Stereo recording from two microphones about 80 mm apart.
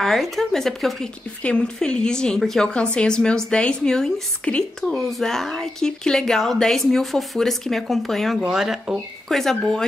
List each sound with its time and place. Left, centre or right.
0.0 s a woman's voice: centre
4.8 s a woman's voice: centre
9.4 s speech: centre